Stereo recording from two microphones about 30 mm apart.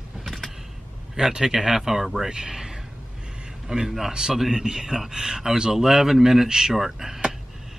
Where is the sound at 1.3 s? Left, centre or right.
Centre.